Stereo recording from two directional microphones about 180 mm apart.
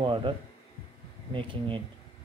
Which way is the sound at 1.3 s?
30° right (ahead or behind).